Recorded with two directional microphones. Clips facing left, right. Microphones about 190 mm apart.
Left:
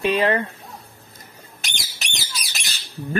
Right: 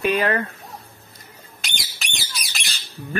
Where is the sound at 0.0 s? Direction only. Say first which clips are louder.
Left 1 dB; 30° left (ahead or behind).